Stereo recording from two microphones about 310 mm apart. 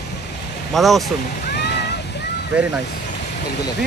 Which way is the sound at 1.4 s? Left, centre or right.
Left.